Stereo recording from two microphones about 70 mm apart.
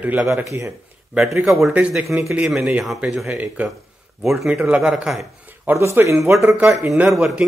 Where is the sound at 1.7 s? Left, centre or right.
Centre.